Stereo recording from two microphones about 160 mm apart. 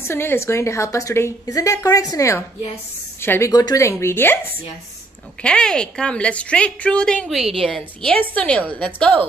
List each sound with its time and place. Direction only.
0.0 s a woman's voice: 15° left (ahead or behind)
5.4 s a woman's voice: 5° left (ahead or behind)